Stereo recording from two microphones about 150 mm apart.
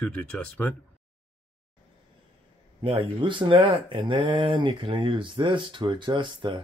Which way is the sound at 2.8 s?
35° right (ahead or behind).